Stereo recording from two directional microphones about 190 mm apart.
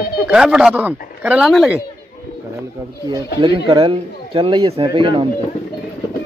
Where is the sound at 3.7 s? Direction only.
25° right (ahead or behind).